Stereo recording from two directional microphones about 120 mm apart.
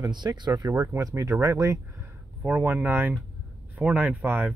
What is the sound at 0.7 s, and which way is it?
Speech, 20° right (ahead or behind).